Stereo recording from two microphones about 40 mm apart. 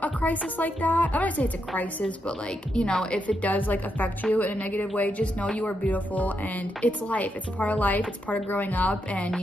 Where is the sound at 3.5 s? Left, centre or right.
Left.